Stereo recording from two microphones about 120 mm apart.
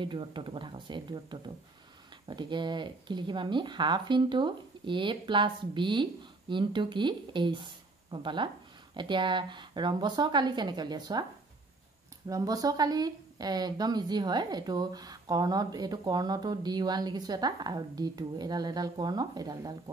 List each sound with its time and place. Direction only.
0.0 s speech: 45° right (ahead or behind)
12.3 s speech: 30° right (ahead or behind)